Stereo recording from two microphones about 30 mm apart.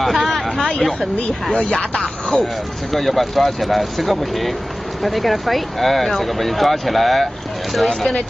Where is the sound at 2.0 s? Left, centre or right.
Centre.